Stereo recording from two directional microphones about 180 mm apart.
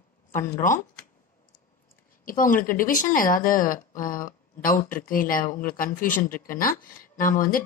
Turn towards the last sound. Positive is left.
turn(degrees=50)  # may be behind; listen again after turning